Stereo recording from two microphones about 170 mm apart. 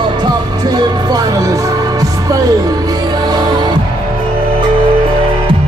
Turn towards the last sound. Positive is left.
turn(degrees=-25)  # may be behind; listen again after turning